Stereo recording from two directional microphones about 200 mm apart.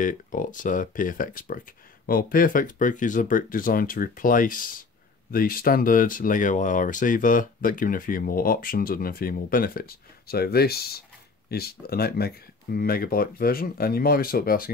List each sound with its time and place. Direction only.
0.0 s speech: 40° left (ahead or behind)